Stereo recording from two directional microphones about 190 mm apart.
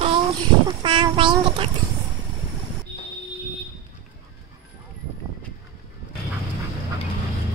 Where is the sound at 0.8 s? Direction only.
25° right (ahead or behind).